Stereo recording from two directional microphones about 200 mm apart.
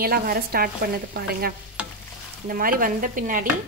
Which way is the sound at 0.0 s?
50° right (ahead or behind).